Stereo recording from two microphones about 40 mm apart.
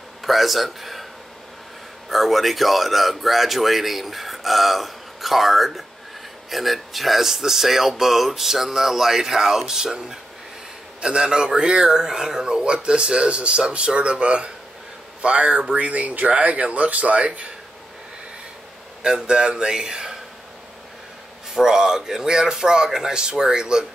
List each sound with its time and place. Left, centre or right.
0.2 s a man's voice: centre
2.0 s speech: centre; by 15.6 s right
15.7 s speech: right
19.2 s speech: right
21.5 s speech: centre